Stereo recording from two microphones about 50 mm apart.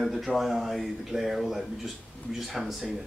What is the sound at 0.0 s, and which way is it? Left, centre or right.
Speech, centre.